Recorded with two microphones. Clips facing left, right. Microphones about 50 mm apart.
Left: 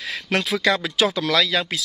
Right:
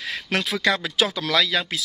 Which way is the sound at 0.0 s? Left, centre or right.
Centre.